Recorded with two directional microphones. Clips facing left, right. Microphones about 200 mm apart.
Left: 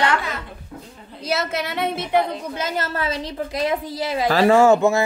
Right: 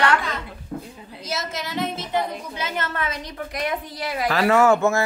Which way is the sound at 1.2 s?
60° left (ahead or behind).